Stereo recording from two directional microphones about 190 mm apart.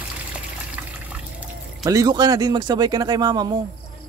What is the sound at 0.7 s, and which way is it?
Water, 5° right (ahead or behind).